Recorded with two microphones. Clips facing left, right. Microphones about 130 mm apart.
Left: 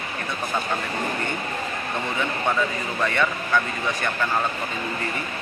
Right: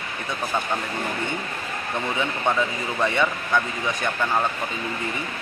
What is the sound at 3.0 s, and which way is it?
Speech, 15° right (ahead or behind).